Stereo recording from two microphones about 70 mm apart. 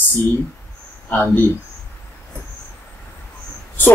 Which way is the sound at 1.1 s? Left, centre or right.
Left.